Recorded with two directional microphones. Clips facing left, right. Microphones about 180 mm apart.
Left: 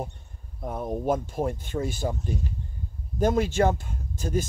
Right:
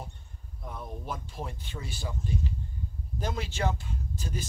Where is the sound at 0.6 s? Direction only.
50° left (ahead or behind).